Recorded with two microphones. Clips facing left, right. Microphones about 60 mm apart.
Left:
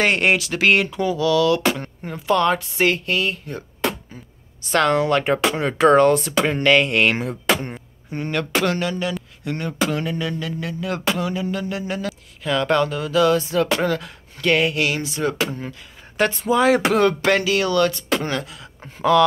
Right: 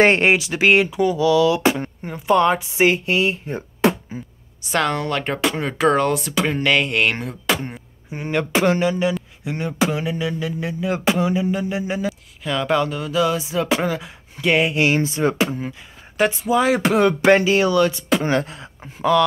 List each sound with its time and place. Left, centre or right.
0.0 s speech: right
0.3 s speech: centre
2.0 s speech: centre; by 3.9 s right
4.1 s a sound: centre
4.6 s speech: centre
12.1 s speech: centre; by 15.5 s right
16.2 s speech: centre
18.3 s beatboxing: right
18.8 s speech: centre